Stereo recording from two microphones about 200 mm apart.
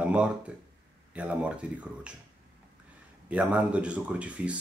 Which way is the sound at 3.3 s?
5° right (ahead or behind).